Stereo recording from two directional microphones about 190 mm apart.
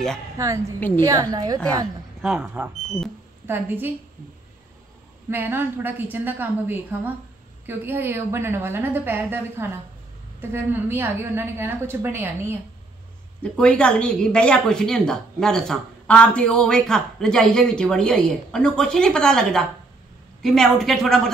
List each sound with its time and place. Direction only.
0.4 s a woman's voice: 15° right (ahead or behind)
0.7 s a woman's voice: 10° left (ahead or behind)
1.0 s a woman's voice: 20° right (ahead or behind)
2.2 s a woman's voice: 5° right (ahead or behind)
5.3 s a woman's voice: 10° right (ahead or behind)
13.4 s speech: 5° left (ahead or behind)